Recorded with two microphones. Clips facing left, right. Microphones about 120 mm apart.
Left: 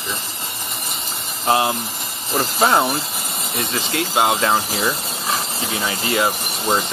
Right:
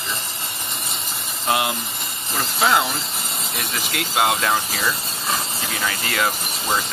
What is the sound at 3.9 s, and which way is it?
Mechanisms, 25° left (ahead or behind).